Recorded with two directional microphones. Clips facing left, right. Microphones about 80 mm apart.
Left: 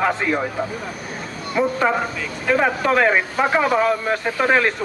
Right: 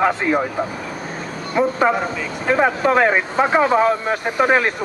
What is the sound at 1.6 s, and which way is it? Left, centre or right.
A man's voice, centre.